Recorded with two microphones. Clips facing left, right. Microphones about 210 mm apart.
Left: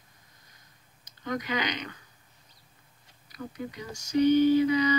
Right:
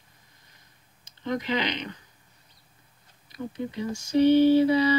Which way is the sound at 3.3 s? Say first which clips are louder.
Right 4 dB; 25° right (ahead or behind).